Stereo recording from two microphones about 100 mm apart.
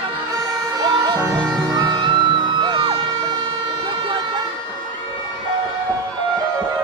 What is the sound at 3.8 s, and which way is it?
Vehicle, 50° right (ahead or behind).